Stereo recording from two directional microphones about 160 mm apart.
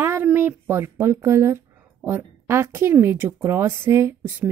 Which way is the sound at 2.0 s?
15° right (ahead or behind).